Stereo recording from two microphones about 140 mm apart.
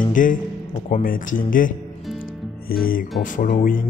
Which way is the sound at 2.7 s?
90° left.